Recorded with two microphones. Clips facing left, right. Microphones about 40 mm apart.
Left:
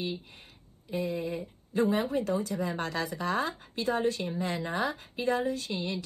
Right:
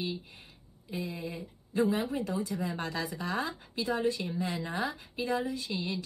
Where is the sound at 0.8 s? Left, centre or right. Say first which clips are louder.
Left 5 dB; left.